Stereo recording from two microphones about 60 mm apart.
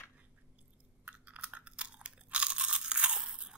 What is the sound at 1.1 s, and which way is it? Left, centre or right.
Crunch, right.